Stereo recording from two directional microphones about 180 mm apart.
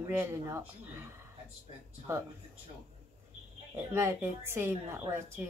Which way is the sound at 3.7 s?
15° right (ahead or behind).